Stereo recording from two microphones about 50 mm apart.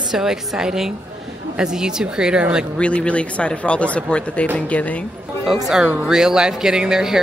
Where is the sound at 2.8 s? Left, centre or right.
Left.